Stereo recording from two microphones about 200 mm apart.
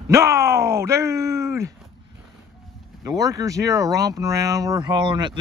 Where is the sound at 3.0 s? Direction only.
20° right (ahead or behind).